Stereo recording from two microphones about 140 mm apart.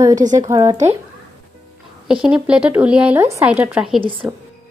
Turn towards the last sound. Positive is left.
turn(degrees=-5)  # may be behind; listen again after turning